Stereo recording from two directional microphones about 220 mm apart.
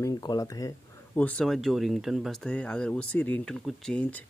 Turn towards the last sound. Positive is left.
turn(degrees=5)  # may be behind; listen again after turning